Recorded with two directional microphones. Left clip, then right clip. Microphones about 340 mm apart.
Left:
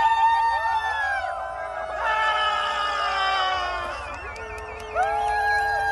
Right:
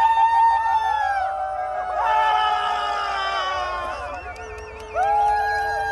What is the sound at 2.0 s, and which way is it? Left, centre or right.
Music, centre.